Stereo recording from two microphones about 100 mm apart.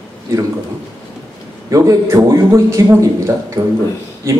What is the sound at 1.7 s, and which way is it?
A man's voice, 35° right (ahead or behind).